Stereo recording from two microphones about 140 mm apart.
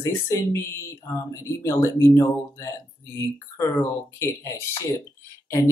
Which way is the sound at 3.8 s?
20° left (ahead or behind).